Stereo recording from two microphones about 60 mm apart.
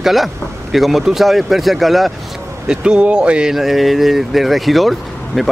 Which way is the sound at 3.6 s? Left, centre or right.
Centre.